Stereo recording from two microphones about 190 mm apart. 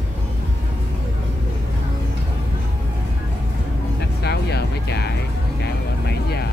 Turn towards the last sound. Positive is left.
turn(degrees=60)  # may be behind; listen again after turning